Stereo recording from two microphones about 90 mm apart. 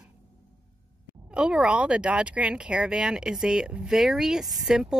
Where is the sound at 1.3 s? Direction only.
10° right (ahead or behind).